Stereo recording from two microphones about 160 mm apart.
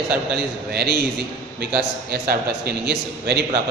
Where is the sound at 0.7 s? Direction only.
75° right (ahead or behind).